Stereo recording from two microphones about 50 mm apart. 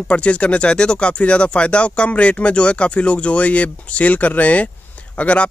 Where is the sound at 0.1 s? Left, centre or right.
Left.